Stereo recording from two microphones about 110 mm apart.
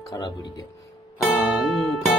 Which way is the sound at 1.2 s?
5° right (ahead or behind).